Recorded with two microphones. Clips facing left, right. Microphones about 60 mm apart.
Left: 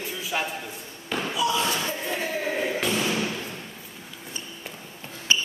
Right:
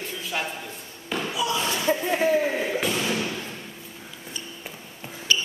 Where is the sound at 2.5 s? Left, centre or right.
Centre.